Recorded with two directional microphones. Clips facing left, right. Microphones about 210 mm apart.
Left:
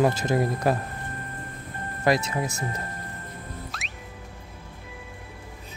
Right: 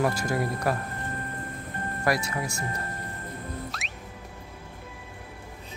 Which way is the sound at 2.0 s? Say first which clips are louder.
Left 4 dB; 20° left (ahead or behind).